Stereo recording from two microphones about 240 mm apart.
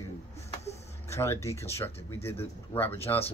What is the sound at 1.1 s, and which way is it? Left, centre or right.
Speech, centre.